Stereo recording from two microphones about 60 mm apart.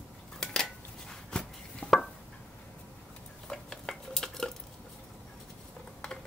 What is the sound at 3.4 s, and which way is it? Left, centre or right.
Dishes, centre.